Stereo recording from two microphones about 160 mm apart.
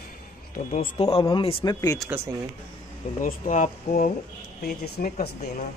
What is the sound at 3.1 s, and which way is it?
Speech, 55° left (ahead or behind).